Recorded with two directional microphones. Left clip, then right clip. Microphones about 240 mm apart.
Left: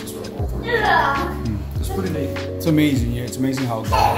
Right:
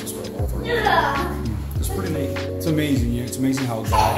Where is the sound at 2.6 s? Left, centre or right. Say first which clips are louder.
Left 5 dB; left.